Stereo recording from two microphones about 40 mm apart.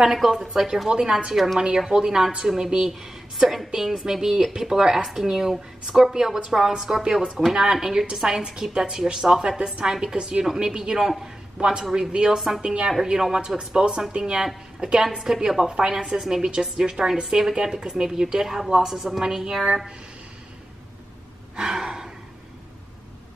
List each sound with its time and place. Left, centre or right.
0.0 s speech: centre
0.8 s a woman's voice: centre
1.3 s a woman's voice: centre
1.8 s speech: centre
9.6 s a woman's voice: right
9.8 s speech: centre
10.1 s a woman's voice: right; by 11.6 s centre
11.6 s a woman's voice: centre
12.4 s a woman's voice: centre
12.6 s a woman's voice: right
21.5 s gasp: centre